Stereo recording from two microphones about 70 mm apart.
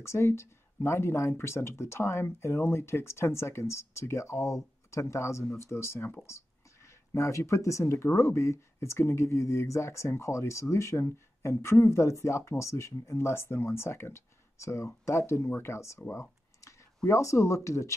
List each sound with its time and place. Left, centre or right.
0.0 s speech: left
6.2 s a sound: left
7.1 s speech: left
16.0 s speech: left
16.6 s a sound: left
17.6 s speech: left